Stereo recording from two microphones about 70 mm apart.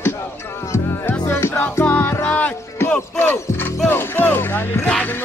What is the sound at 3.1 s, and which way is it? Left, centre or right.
Music, left.